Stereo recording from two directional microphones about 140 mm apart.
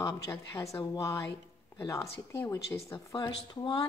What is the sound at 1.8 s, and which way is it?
Speech, 20° left (ahead or behind).